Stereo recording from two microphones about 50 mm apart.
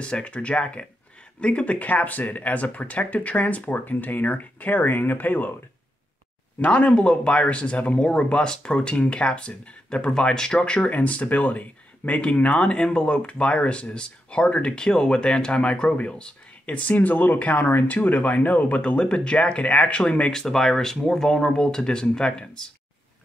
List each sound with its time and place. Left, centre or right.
0.0 s speech: left
6.6 s speech: left
10.9 s speech: left
18.8 s speech: left
20.2 s speech: centre